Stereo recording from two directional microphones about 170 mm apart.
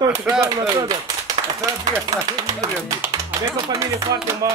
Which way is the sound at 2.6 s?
20° right (ahead or behind).